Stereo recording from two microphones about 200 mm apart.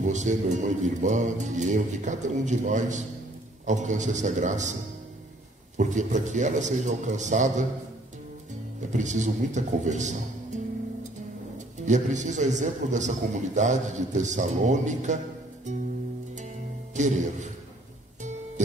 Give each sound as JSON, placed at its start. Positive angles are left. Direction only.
{"t": 0.0, "sound": "a man's voice", "side_deg": -40}
{"t": 5.8, "sound": "a man's voice", "side_deg": -35}
{"t": 8.9, "sound": "a man's voice", "side_deg": -35}
{"t": 16.9, "sound": "a man's voice", "side_deg": -35}